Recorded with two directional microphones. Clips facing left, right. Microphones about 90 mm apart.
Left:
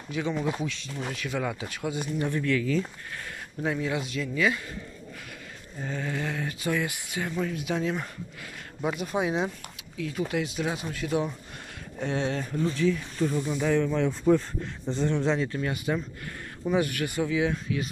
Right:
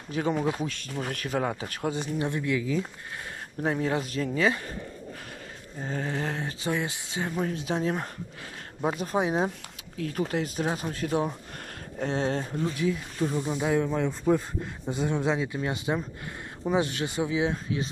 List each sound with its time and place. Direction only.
0.1 s speech: 40° right (ahead or behind)
2.1 s speech: 20° right (ahead or behind)
3.6 s speech: 40° right (ahead or behind)
5.8 s speech: 40° right (ahead or behind)
7.3 s speech: 35° right (ahead or behind)
12.7 s speech: 15° right (ahead or behind)
13.7 s speech: 10° right (ahead or behind)
15.6 s speech: 25° right (ahead or behind)